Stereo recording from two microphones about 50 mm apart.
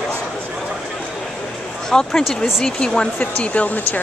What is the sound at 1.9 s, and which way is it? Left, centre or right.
Speech, centre.